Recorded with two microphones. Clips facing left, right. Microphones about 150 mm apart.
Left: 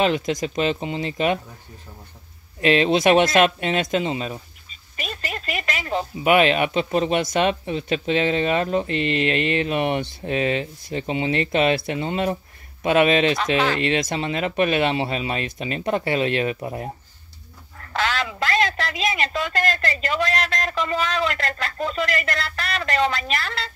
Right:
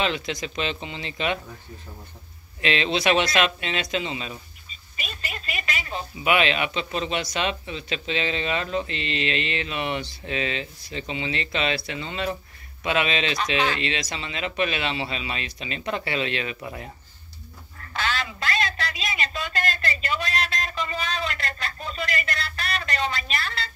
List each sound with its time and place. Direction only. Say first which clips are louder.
0.0 s speech: left 6 dB; 45° left (ahead or behind)
2.6 s speech: left 6 dB; 45° left (ahead or behind)
5.0 s a sound: left 6 dB; 60° left (ahead or behind)
6.2 s speech: left 5 dB; 45° left (ahead or behind)
17.9 s a sound: left 4 dB; 85° left
20.2 s a man's voice: left 5 dB; 85° left